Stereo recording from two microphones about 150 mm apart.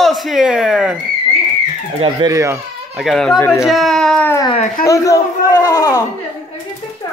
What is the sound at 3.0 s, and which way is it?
Speech, centre (ahead or behind).